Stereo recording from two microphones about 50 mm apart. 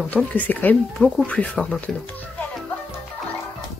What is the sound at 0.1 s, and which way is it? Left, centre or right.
Speech, left.